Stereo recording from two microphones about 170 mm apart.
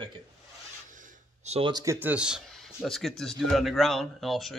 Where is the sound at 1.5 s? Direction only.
30° right (ahead or behind).